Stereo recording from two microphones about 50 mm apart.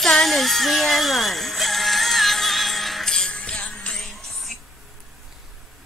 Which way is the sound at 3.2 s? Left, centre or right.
Centre.